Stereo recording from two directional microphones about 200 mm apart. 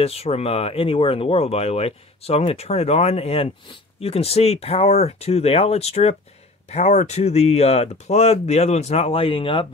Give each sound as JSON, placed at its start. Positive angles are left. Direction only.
{"t": 0.0, "sound": "speech", "side_deg": 30}